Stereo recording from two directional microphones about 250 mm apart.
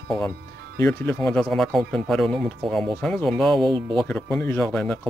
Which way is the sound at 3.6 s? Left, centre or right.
Centre.